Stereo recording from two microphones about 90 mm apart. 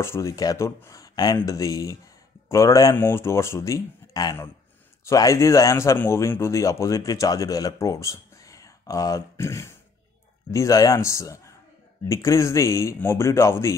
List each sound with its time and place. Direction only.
0.0 s speech: 30° left (ahead or behind)
3.0 s speech: 25° left (ahead or behind)